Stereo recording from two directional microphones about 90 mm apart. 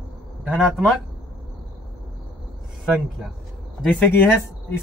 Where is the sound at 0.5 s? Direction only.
5° right (ahead or behind).